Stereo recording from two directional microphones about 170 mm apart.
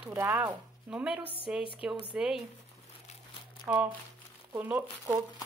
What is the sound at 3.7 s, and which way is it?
Speech, 10° right (ahead or behind).